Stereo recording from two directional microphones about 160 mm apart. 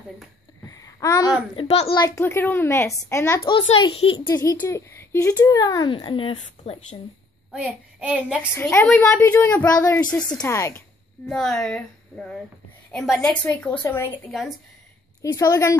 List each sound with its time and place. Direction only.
0.7 s a sound: 20° left (ahead or behind)
1.5 s a child's voice: 35° left (ahead or behind)
2.0 s a woman's voice: 15° left (ahead or behind)
3.6 s a child's voice: 35° left (ahead or behind)
4.3 s speech: 20° left (ahead or behind); by 7.0 s 40° left (ahead or behind)
7.5 s child singing: 5° right (ahead or behind)
8.5 s a woman's voice: 15° left (ahead or behind)
11.2 s a woman's voice: 5° left (ahead or behind)
14.3 s speech: centre (ahead or behind)
15.3 s speech: 20° left (ahead or behind)